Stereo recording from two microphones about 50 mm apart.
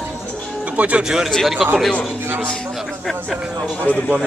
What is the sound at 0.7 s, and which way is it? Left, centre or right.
Speech, right.